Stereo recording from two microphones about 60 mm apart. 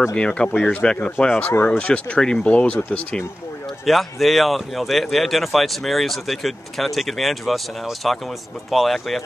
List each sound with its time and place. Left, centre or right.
0.1 s speech: centre
1.5 s speech: left
1.8 s speech: left
3.8 s speech: centre